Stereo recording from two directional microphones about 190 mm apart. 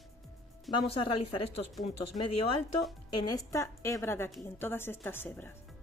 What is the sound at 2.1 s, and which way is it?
Speech, 40° left (ahead or behind).